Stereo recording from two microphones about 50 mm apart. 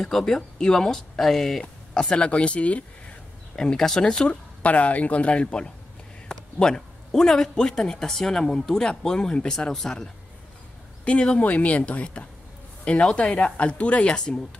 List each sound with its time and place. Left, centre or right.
0.0 s a man's voice: centre
2.0 s speech: left
3.5 s a man's voice: centre
4.3 s a man's voice: left; by 10.0 s centre
11.1 s speech: left